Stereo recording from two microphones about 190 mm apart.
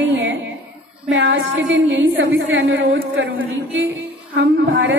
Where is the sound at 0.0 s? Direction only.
80° right.